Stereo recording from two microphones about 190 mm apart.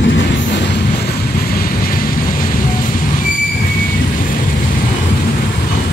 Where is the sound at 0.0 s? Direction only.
70° left (ahead or behind).